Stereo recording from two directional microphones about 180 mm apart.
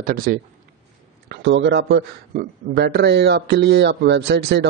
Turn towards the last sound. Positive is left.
turn(degrees=-65)  # may be behind; listen again after turning